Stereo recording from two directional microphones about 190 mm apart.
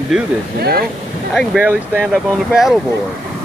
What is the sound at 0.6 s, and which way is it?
Speech, 55° right (ahead or behind).